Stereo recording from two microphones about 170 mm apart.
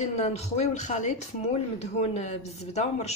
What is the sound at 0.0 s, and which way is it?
A woman's voice, 40° left (ahead or behind).